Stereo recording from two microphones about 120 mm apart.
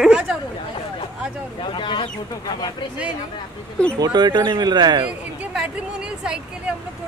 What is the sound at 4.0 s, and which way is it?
Speech, 35° right (ahead or behind).